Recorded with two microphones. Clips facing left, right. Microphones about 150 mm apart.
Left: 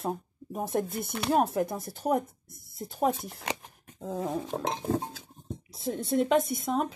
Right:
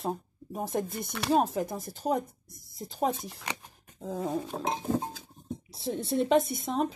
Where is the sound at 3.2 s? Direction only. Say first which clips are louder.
Left 1 dB; 50° left (ahead or behind).